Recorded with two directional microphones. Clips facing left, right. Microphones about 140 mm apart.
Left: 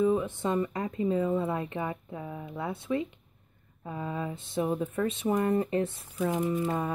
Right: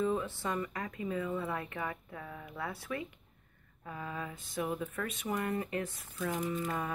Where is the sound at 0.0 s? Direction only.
15° left (ahead or behind).